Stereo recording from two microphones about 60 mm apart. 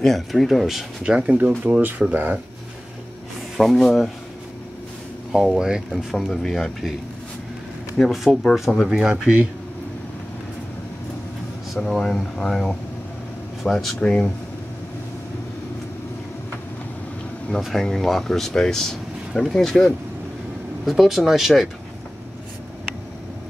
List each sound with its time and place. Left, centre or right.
0.0 s speech: centre
1.0 s speech: centre
1.6 s speech: right
3.5 s speech: centre
5.3 s speech: centre
5.9 s speech: centre
8.0 s speech: centre
11.7 s speech: centre
13.9 s speech: centre
17.6 s speech: centre